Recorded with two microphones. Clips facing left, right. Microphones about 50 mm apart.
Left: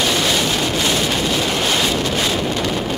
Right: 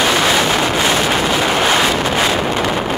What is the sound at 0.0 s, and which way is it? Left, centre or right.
Vehicle, right.